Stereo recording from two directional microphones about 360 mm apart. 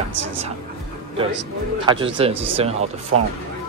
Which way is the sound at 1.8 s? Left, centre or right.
Centre.